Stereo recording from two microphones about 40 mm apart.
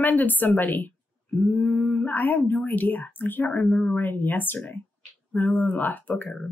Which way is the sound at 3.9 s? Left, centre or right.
Left.